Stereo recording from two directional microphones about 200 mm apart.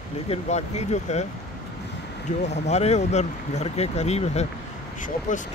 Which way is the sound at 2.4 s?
35° left (ahead or behind).